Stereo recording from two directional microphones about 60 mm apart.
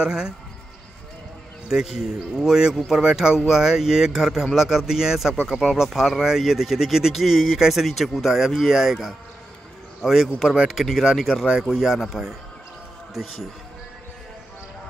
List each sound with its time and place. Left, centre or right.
0.0 s speech: centre
1.7 s speech: centre